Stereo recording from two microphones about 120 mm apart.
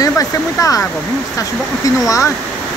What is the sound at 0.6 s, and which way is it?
Speech, 25° left (ahead or behind).